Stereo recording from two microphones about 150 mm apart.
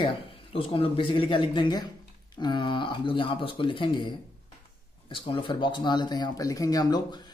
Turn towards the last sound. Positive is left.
turn(degrees=25)  # may be behind; listen again after turning